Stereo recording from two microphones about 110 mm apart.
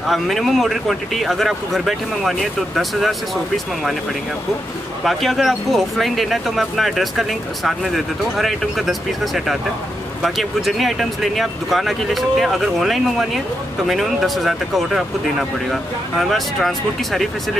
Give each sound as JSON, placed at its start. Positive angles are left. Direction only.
{"t": 0.0, "sound": "speech", "side_deg": 0}
{"t": 5.0, "sound": "speech", "side_deg": 0}